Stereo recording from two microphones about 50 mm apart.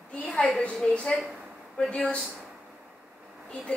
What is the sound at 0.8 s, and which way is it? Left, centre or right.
Speech, centre.